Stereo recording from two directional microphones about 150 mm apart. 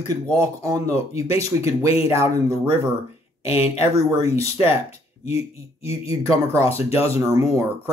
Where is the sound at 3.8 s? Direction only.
45° left (ahead or behind).